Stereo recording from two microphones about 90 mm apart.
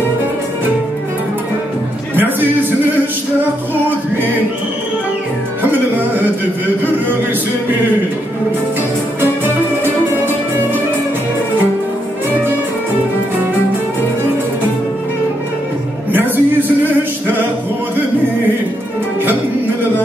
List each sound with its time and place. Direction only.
5.6 s music: 20° right (ahead or behind)
16.1 s music: 20° right (ahead or behind)